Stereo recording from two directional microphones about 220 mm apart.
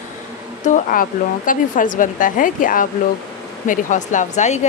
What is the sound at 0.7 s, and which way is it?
A woman's voice, 35° left (ahead or behind).